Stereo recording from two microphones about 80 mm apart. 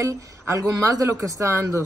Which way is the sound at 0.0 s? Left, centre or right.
Right.